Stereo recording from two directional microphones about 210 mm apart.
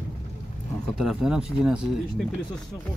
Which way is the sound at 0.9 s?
Centre (ahead or behind).